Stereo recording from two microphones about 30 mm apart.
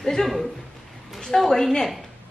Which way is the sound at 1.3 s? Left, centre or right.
Centre.